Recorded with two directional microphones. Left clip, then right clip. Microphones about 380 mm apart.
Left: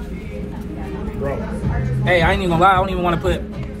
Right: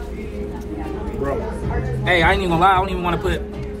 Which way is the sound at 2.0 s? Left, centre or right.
Centre.